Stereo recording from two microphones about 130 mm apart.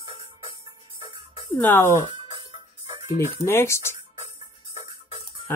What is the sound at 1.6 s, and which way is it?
Speech, 15° left (ahead or behind).